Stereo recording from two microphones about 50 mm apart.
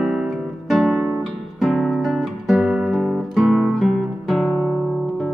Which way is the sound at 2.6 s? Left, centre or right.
Right.